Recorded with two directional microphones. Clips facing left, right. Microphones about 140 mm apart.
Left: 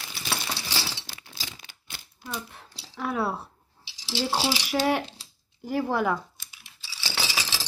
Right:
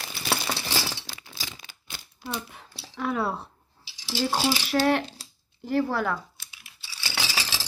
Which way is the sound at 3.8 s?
45° right (ahead or behind).